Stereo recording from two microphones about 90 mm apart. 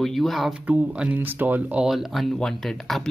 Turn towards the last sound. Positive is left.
turn(degrees=0)  # may be behind; listen again after turning